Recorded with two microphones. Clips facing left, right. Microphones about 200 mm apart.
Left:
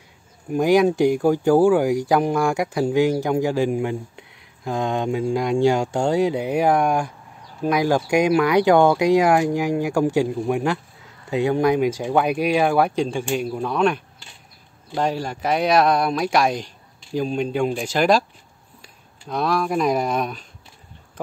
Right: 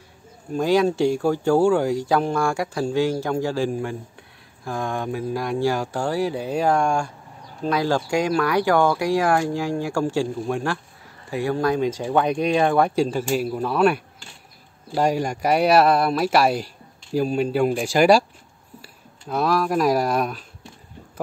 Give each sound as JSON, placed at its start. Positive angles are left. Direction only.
{"t": 0.5, "sound": "a man's voice", "side_deg": 15}